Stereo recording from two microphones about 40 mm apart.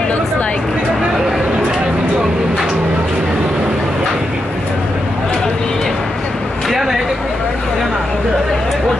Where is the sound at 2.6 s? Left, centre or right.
Centre.